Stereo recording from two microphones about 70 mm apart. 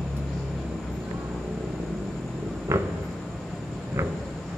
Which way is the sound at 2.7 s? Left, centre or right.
Right.